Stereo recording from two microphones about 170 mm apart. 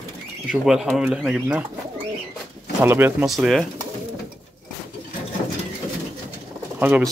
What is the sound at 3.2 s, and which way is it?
Speech, centre (ahead or behind).